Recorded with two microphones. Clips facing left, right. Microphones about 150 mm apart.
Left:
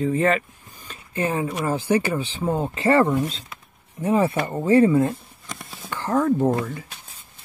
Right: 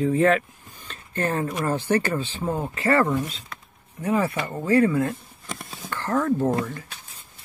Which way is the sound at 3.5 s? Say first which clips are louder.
Right 1 dB; 5° left (ahead or behind).